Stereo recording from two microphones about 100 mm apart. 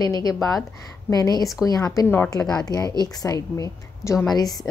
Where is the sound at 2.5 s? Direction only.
40° left (ahead or behind).